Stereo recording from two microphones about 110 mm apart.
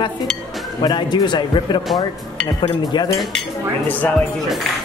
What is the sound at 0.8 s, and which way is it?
Speech, 45° left (ahead or behind).